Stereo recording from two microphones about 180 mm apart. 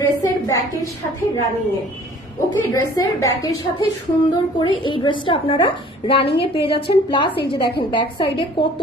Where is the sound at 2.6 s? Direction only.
15° left (ahead or behind).